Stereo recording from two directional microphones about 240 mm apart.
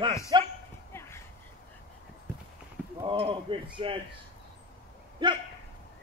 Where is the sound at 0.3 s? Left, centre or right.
Centre.